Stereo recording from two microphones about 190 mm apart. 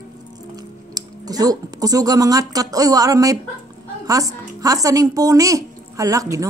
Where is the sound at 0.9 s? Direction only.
20° right (ahead or behind).